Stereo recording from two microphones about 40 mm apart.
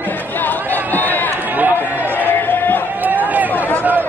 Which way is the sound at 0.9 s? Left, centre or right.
Left.